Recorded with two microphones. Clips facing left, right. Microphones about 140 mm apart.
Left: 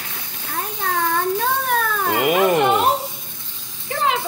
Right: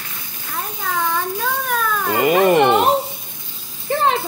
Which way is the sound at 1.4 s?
45° left (ahead or behind).